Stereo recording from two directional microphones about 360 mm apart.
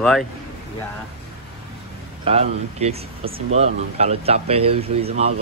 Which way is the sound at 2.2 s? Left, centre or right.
Centre.